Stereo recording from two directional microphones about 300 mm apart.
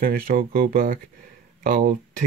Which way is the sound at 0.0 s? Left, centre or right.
Right.